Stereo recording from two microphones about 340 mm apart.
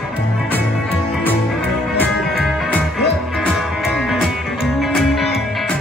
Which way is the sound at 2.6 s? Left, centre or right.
Centre.